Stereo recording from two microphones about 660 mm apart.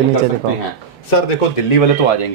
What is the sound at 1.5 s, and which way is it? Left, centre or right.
Speech, left.